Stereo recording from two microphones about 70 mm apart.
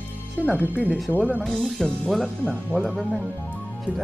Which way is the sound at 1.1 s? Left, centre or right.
Right.